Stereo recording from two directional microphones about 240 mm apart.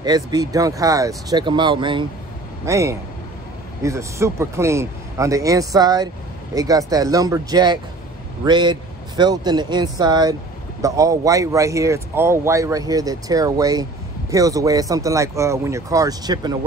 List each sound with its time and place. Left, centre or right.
0.0 s speech: centre